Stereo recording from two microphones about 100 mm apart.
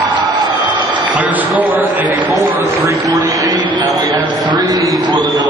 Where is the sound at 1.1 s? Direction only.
15° right (ahead or behind).